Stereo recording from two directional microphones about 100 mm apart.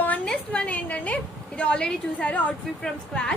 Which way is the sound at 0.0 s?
15° left (ahead or behind).